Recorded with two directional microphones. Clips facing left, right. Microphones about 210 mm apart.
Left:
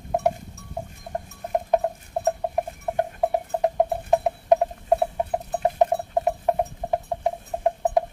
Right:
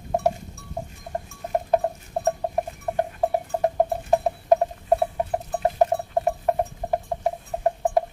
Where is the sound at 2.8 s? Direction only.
5° left (ahead or behind).